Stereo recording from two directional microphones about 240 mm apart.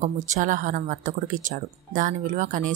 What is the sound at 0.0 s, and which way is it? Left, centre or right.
Speech, right.